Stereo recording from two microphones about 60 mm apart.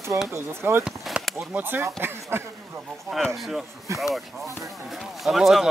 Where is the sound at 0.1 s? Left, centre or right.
Right.